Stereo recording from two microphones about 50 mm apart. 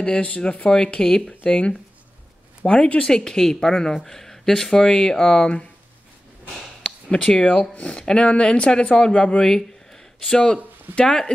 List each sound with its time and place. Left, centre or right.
0.0 s speech: left
7.2 s speech: centre
7.7 s speech: left